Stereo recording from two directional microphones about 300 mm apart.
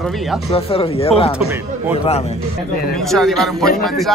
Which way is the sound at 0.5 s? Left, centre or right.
Centre.